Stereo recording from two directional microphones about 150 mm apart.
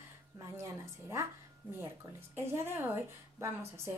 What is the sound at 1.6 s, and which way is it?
Speech, 10° left (ahead or behind).